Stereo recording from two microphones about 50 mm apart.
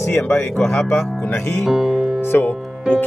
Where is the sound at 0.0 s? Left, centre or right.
Left.